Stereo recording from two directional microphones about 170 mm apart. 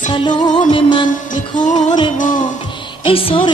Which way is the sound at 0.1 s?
25° left (ahead or behind).